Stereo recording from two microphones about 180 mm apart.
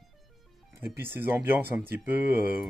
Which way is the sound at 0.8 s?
10° right (ahead or behind).